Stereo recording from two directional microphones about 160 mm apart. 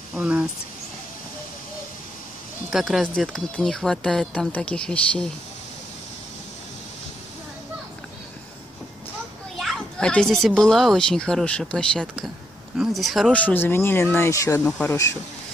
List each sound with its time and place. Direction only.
0.1 s speech: 5° right (ahead or behind)
2.7 s speech: centre (ahead or behind)
9.6 s speech: centre (ahead or behind)
13.4 s speech: 10° left (ahead or behind)